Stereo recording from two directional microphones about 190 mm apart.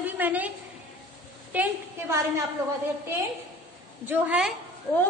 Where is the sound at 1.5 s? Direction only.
10° right (ahead or behind).